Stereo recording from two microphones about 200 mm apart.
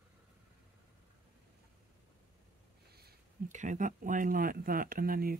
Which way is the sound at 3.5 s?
40° right (ahead or behind).